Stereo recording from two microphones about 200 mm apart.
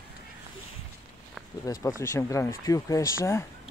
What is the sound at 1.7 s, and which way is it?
Speech, 15° left (ahead or behind).